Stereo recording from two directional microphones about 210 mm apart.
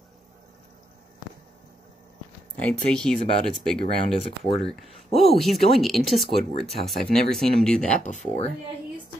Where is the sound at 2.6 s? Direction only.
5° left (ahead or behind).